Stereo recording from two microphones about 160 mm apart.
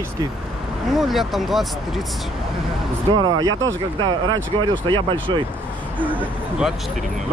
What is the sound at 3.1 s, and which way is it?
Speech, 25° right (ahead or behind).